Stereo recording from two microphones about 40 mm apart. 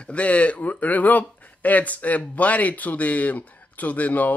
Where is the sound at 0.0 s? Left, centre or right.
Left.